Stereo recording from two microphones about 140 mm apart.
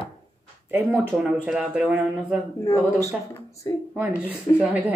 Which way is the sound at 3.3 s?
20° left (ahead or behind).